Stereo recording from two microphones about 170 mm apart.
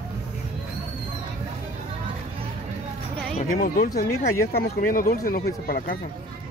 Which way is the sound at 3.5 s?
55° left (ahead or behind).